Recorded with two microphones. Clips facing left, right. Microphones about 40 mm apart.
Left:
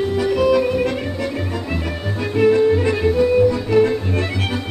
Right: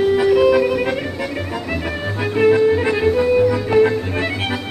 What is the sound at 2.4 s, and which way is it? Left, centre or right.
Music, centre.